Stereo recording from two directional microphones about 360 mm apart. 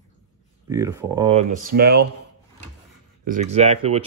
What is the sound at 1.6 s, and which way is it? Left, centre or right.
Speech, right.